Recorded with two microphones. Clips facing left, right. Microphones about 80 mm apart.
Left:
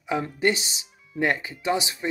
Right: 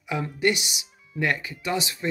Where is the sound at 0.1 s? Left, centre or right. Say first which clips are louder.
Left 1 dB; left.